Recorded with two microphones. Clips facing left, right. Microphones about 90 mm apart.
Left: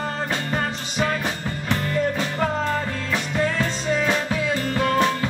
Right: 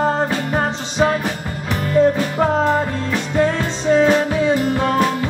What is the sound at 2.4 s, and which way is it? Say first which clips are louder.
Music: right 8 dB; 25° right (ahead or behind).